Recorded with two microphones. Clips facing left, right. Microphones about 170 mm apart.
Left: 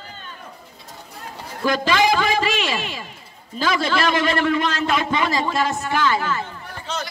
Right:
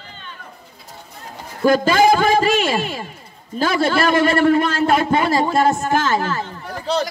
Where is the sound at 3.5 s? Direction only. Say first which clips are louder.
Right 3 dB; 45° right (ahead or behind).